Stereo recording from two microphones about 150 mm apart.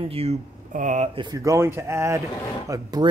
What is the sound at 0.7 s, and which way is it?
Speech, 60° right (ahead or behind).